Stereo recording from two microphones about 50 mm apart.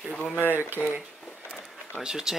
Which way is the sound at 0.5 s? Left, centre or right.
Right.